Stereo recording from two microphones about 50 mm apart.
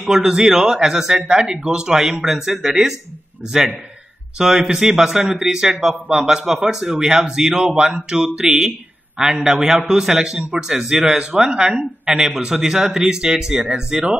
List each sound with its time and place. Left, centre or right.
0.0 s a man's voice: centre
4.4 s a man's voice: centre